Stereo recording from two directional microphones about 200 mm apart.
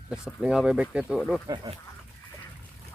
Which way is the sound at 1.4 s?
20° right (ahead or behind).